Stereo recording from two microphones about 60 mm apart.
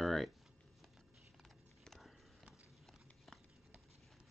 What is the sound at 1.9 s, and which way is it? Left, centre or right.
Clip-clop, centre.